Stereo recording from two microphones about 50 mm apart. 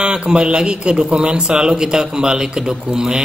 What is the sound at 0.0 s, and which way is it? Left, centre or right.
A man's voice, centre.